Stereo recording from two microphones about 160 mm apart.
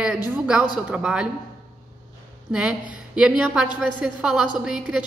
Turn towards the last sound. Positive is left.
turn(degrees=-5)  # may be behind; listen again after turning